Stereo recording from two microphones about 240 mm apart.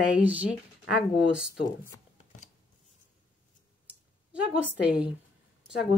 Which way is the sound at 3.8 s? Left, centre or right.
Centre.